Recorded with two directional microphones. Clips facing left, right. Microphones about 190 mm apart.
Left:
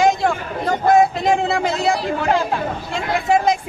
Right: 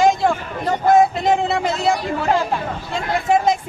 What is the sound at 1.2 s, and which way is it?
Speech, centre (ahead or behind).